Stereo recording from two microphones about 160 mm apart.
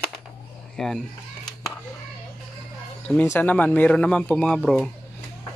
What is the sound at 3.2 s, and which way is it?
Speech, 15° left (ahead or behind).